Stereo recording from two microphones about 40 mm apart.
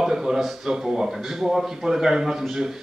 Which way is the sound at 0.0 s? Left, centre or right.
Centre.